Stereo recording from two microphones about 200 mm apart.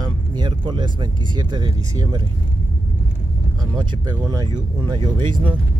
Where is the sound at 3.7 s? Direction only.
20° right (ahead or behind).